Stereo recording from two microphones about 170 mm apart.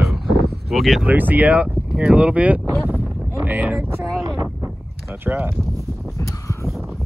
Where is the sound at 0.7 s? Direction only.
Centre (ahead or behind).